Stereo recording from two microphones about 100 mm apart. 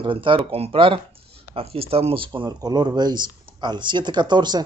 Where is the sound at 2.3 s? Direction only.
45° right (ahead or behind).